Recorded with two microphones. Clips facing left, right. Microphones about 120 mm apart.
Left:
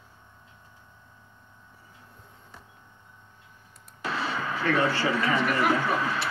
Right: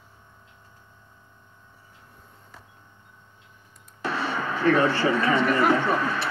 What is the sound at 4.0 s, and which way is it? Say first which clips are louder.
Radio: right 3 dB; 40° right (ahead or behind).